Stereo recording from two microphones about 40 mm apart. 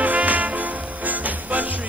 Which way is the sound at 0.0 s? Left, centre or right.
Right.